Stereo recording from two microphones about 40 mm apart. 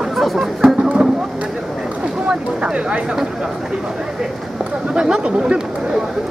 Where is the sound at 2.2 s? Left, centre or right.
Right.